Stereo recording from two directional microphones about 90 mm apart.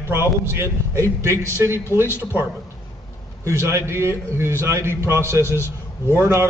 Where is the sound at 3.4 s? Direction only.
30° right (ahead or behind).